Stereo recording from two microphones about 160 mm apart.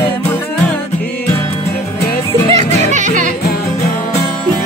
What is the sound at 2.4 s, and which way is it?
Speech, 45° right (ahead or behind).